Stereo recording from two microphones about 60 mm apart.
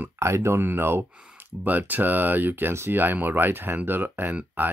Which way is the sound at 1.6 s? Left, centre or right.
Right.